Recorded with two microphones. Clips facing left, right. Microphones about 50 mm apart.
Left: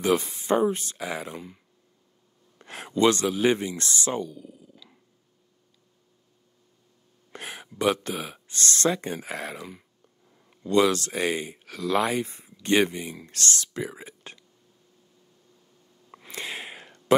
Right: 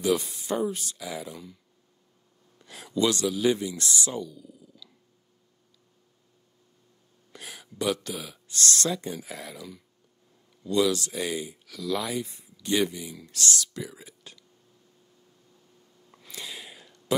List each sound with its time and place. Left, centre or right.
0.0 s speech: left
2.6 s speech: left
7.3 s a sound: left
7.8 s speech: left
9.0 s speech: left
16.1 s a sound: left